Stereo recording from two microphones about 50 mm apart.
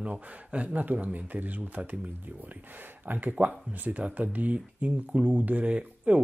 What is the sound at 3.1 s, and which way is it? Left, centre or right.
Speech, right.